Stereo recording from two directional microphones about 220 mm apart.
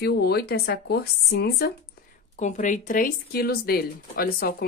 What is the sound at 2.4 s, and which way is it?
Speech, 35° left (ahead or behind).